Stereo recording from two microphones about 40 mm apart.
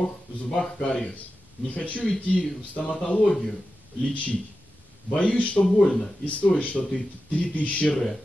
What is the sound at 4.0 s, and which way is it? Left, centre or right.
Speech, left.